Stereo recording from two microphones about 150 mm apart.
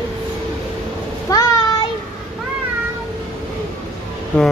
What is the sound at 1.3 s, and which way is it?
Child singing, 25° left (ahead or behind).